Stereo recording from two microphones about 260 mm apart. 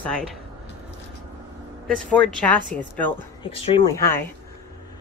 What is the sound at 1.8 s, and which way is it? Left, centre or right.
Speech, centre.